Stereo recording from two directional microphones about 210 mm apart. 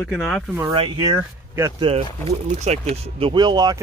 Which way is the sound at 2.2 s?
30° right (ahead or behind).